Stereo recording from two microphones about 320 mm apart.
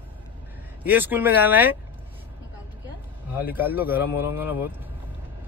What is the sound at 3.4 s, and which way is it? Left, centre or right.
Speech, centre.